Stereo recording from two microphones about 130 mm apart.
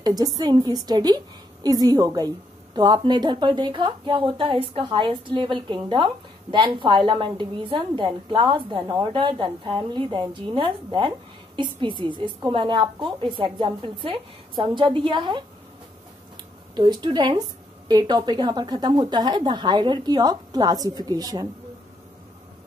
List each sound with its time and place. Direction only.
0.0 s a woman's voice: 30° right (ahead or behind)
16.7 s a woman's voice: 35° right (ahead or behind)